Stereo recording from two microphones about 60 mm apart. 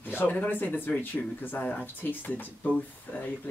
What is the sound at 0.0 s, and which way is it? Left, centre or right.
Speech, left.